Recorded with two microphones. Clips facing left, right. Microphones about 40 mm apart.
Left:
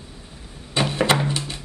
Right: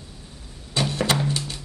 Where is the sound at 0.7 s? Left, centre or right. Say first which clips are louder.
Left 3 dB; left.